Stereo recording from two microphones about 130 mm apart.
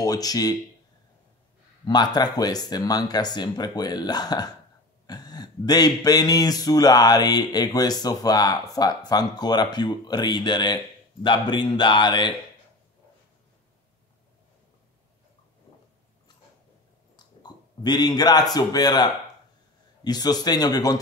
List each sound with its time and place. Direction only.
0.0 s speech: 30° left (ahead or behind)
1.9 s speech: 35° left (ahead or behind)
17.4 s a man's voice: 30° left (ahead or behind)